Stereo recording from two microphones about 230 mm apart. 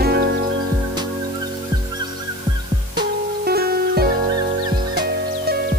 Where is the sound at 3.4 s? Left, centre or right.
Right.